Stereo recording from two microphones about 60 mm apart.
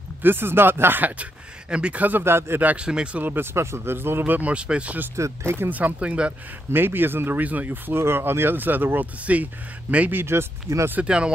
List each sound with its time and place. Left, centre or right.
0.2 s speech: right
1.7 s speech: centre; by 2.6 s right
2.6 s speech: right
3.3 s speech: right
4.2 s speech: right
5.1 s speech: right
5.7 s speech: right
6.7 s speech: right
10.2 s speech: right
11.0 s speech: centre